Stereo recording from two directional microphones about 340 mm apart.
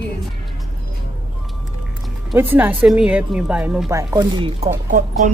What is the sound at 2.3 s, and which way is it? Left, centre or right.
A woman's voice, centre.